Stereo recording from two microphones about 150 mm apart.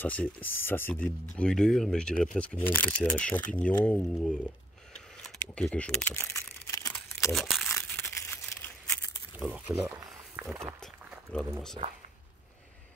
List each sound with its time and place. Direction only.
0.0 s speech: 10° left (ahead or behind)
5.2 s crumpling: 5° left (ahead or behind)
7.3 s speech: centre (ahead or behind)
7.7 s crumpling: 15° left (ahead or behind)
9.5 s a sound: 10° right (ahead or behind)
11.8 s speech: 40° right (ahead or behind)